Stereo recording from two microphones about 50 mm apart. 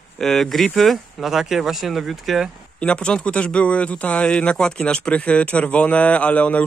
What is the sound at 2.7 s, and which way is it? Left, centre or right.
Speech, left.